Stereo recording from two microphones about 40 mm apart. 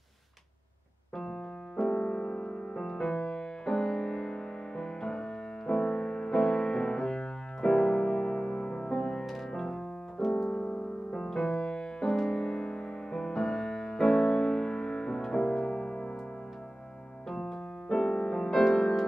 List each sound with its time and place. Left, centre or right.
1.1 s keyboard: centre
1.9 s music: left
11.1 s music: centre
17.3 s keyboard: centre
17.8 s music: centre